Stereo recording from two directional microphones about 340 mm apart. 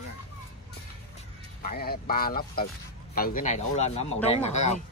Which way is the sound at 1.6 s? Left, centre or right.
Left.